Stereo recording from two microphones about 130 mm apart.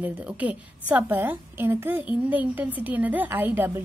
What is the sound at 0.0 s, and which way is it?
A woman's voice, 10° right (ahead or behind).